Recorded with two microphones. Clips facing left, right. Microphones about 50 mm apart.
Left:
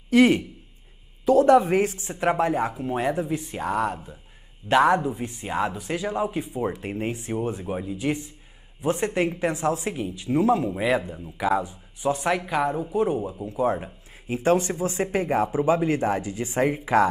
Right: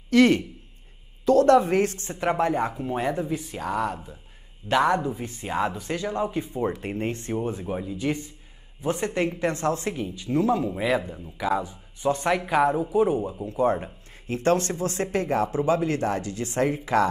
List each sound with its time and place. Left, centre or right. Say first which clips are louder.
0.1 s speech: left 1 dB; centre
12.0 s speech: even; centre